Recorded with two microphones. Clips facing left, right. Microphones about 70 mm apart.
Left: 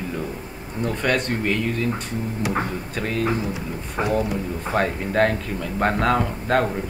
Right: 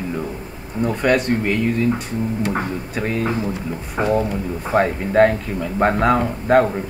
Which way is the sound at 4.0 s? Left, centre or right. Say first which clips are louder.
Right 4 dB; right.